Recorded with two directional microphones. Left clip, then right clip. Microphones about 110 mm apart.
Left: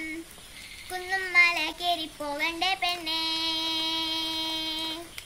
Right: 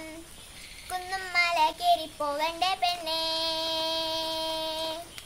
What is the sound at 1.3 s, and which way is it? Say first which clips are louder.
Child singing: left 2 dB; 45° right (ahead or behind).